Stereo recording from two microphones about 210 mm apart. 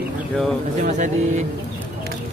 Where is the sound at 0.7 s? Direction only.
35° right (ahead or behind).